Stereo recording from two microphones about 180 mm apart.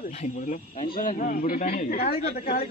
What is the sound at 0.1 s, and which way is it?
Speech, 40° left (ahead or behind).